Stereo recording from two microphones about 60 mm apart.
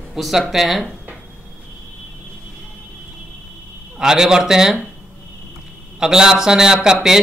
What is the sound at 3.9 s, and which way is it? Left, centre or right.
Speech, centre.